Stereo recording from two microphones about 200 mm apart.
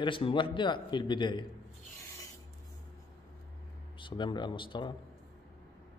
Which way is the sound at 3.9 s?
25° left (ahead or behind).